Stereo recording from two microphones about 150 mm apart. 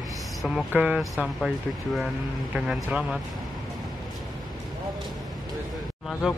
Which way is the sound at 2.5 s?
5° right (ahead or behind).